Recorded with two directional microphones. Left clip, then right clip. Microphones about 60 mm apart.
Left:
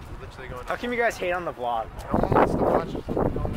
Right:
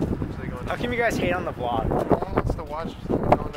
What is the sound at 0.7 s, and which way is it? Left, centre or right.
Speech, centre.